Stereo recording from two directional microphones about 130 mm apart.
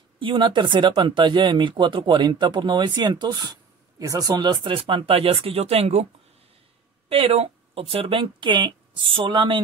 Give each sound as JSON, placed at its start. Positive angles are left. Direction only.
{"t": 0.2, "sound": "speech", "side_deg": -40}
{"t": 7.1, "sound": "speech", "side_deg": -45}